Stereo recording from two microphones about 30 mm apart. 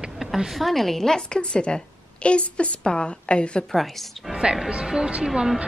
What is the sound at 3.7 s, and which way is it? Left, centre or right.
Speech, centre.